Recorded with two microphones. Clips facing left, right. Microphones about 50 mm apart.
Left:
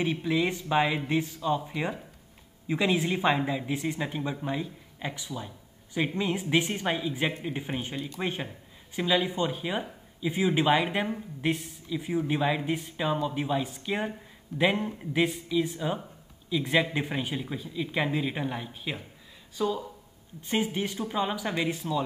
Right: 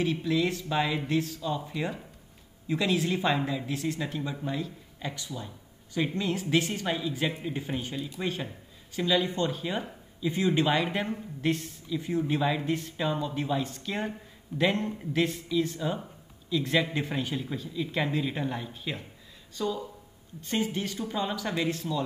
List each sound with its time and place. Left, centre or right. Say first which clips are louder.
0.0 s a man's voice: even; centre